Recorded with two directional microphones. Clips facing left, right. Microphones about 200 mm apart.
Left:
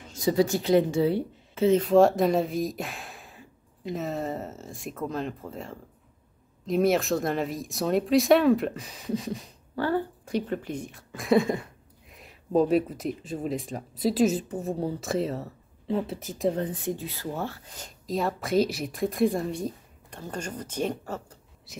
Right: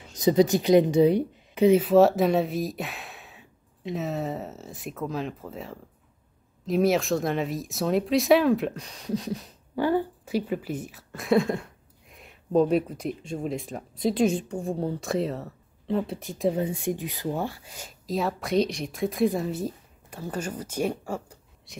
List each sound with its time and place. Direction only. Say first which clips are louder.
0.1 s a woman's voice: right 3 dB; 20° right (ahead or behind)
1.9 s speech: right 1 dB; centre (ahead or behind)
9.8 s speech: right 3 dB; 15° right (ahead or behind)
21.7 s speech: even; centre (ahead or behind)